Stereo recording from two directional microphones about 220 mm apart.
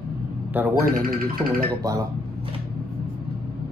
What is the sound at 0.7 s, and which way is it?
Speech, 40° right (ahead or behind).